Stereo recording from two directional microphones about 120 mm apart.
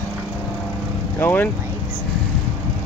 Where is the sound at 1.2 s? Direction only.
20° left (ahead or behind).